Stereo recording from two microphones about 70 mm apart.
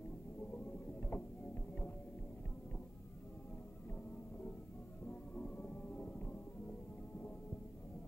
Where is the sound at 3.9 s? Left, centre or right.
Left.